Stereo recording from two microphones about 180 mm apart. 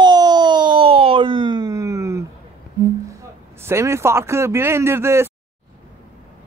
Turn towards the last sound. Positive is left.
turn(degrees=-15)  # may be behind; listen again after turning